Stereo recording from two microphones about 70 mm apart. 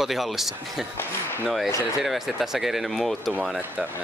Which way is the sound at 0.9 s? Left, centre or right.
Left.